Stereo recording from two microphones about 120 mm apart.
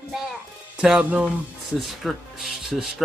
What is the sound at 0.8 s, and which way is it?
Speech, 10° right (ahead or behind).